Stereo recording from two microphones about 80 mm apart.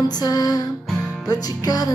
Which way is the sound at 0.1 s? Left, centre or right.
Left.